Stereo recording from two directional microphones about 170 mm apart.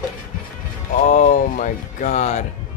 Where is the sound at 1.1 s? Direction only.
50° left (ahead or behind).